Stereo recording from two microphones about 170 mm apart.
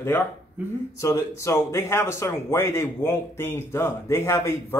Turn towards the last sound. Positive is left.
turn(degrees=15)  # may be behind; listen again after turning